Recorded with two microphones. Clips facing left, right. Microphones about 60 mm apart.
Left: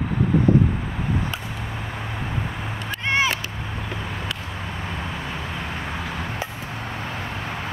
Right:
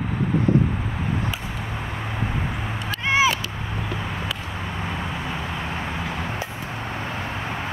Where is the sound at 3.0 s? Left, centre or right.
Centre.